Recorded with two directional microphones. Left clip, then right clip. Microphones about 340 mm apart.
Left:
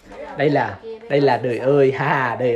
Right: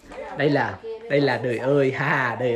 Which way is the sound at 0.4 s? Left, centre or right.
Centre.